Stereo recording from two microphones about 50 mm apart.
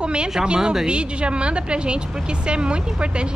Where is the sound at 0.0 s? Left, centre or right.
Centre.